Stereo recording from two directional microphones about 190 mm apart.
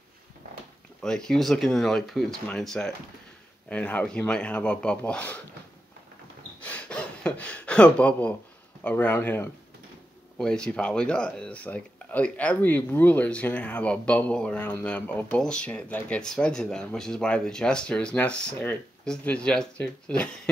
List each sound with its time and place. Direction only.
1.0 s speech: 5° left (ahead or behind)
6.6 s gasp: 5° left (ahead or behind)
8.8 s speech: 10° left (ahead or behind)